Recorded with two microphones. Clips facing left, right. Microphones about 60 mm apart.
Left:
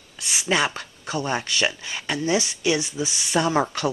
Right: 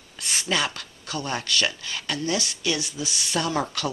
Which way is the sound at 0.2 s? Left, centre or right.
Centre.